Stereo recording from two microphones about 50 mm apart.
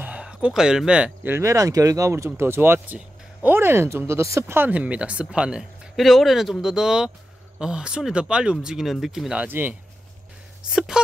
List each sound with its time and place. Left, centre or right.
0.0 s a sound: right
0.5 s speech: centre
1.4 s speech: right
2.4 s speech: right
4.6 s speech: right
5.9 s speech: centre
9.0 s speech: centre
9.5 s speech: right
10.7 s speech: centre